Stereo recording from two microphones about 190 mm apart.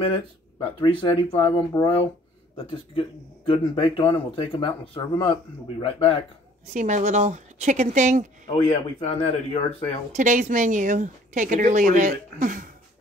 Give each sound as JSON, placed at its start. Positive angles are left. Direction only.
{"t": 0.6, "sound": "speech", "side_deg": 25}
{"t": 6.6, "sound": "speech", "side_deg": -40}
{"t": 8.5, "sound": "speech", "side_deg": 30}
{"t": 10.1, "sound": "speech", "side_deg": -40}